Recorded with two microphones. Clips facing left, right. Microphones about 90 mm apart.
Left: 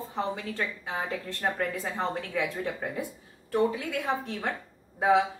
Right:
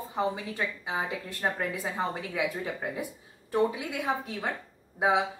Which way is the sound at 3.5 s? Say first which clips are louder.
Left 1 dB; 15° right (ahead or behind).